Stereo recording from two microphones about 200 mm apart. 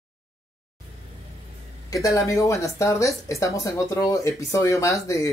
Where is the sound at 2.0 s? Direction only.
15° left (ahead or behind).